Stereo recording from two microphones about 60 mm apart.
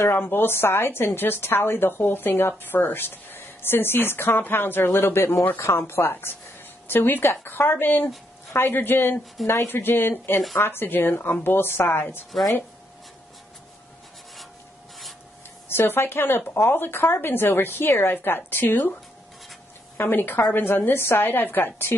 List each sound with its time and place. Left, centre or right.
0.1 s a woman's voice: left
5.4 s a woman's voice: left
5.7 s a woman's voice: left
12.3 s speech: centre
15.7 s a woman's voice: left
20.0 s a woman's voice: left